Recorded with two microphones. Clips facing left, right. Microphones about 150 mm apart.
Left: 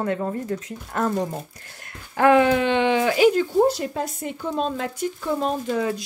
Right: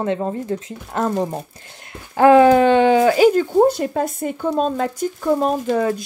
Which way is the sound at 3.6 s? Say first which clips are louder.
Right 5 dB; 55° right (ahead or behind).